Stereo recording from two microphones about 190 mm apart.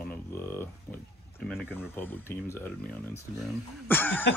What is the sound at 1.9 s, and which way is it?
Speech, 10° left (ahead or behind).